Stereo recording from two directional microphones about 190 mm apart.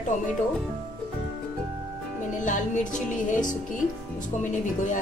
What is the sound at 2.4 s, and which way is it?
A woman's voice, 40° left (ahead or behind).